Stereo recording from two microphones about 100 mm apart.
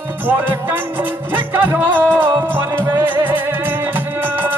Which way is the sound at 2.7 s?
35° right (ahead or behind).